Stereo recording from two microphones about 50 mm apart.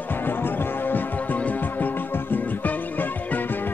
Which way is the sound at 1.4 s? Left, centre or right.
Left.